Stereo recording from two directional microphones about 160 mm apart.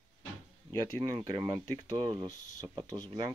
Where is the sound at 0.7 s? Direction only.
30° right (ahead or behind).